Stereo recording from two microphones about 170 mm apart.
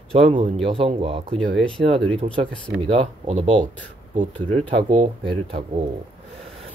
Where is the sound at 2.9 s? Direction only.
35° right (ahead or behind).